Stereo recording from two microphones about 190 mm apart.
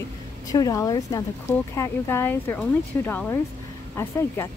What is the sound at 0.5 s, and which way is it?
A woman's voice, 20° left (ahead or behind).